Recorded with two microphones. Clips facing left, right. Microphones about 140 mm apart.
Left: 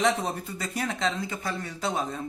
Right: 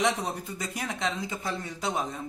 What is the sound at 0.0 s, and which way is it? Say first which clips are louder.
Speech: left 2 dB; 15° right (ahead or behind).